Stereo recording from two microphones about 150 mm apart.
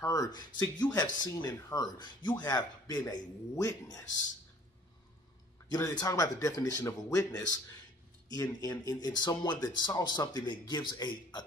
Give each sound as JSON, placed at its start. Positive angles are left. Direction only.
{"t": 0.0, "sound": "speech", "side_deg": 20}
{"t": 5.7, "sound": "speech", "side_deg": 25}